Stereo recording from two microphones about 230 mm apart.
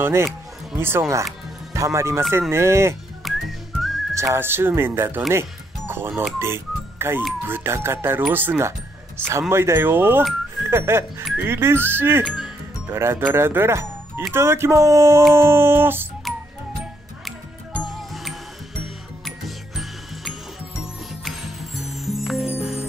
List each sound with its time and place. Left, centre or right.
0.0 s speech: centre
3.3 s whistling: centre
4.1 s speech: centre
15.3 s music: centre
17.7 s music: centre